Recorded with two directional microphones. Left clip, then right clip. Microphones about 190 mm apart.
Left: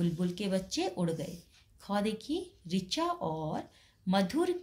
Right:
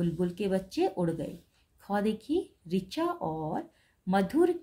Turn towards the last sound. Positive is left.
turn(degrees=-35)  # may be behind; listen again after turning